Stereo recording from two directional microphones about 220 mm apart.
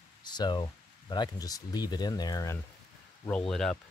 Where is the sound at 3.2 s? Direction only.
5° left (ahead or behind).